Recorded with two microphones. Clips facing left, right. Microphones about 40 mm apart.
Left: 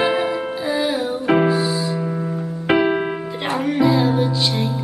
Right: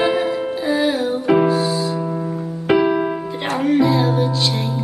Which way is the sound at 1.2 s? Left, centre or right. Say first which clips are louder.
Right 1 dB; centre.